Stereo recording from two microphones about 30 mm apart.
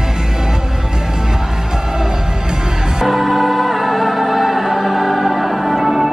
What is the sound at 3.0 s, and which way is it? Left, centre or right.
Music, centre.